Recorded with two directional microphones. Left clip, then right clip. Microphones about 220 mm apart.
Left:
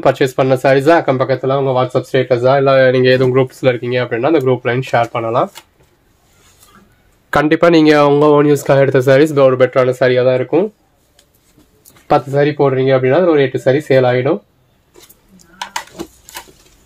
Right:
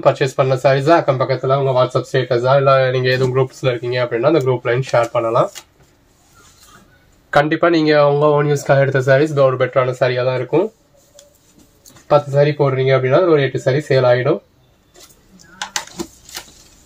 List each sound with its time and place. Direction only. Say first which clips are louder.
0.0 s speech: left 2 dB; 50° left (ahead or behind)
7.2 s speech: left 3 dB; 50° left (ahead or behind)
12.1 s speech: left 1 dB; 50° left (ahead or behind)